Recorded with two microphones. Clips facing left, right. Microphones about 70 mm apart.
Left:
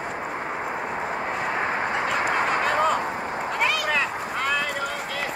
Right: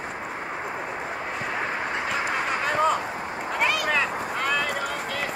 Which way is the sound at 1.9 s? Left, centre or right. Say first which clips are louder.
Left 2 dB; centre.